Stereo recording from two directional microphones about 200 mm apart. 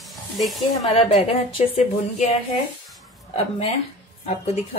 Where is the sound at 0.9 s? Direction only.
30° left (ahead or behind).